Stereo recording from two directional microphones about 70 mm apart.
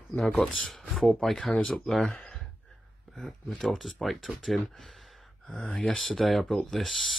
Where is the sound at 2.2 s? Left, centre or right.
Centre.